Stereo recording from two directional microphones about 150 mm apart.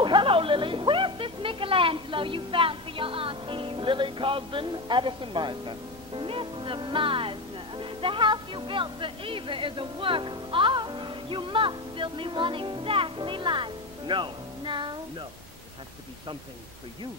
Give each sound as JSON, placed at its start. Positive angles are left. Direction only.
{"t": 0.0, "sound": "speech", "side_deg": -35}